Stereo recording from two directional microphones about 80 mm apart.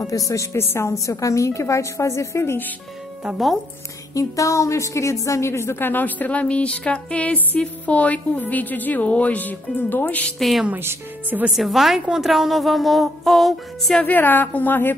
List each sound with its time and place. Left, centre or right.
0.0 s a woman's voice: left
3.3 s a woman's voice: centre
4.1 s a woman's voice: left; by 10.3 s centre
10.8 s speech: right
11.5 s a woman's voice: centre
14.0 s a woman's voice: left